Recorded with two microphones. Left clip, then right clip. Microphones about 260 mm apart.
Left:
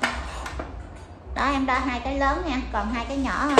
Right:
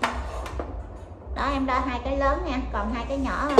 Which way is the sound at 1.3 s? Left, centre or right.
Centre.